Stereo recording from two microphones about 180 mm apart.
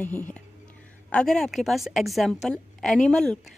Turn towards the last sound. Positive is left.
turn(degrees=5)  # may be behind; listen again after turning